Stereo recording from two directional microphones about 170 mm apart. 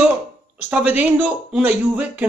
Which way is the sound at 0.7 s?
10° right (ahead or behind).